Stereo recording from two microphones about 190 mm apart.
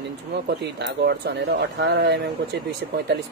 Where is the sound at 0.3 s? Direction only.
60° right (ahead or behind).